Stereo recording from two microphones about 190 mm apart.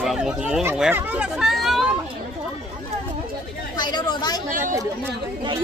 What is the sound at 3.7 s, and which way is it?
Chatter, 20° left (ahead or behind).